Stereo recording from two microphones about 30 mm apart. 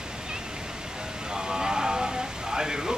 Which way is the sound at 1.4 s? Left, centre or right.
Right.